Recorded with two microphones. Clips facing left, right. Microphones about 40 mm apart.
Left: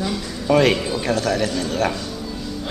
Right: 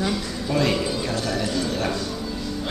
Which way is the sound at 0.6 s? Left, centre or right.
Left.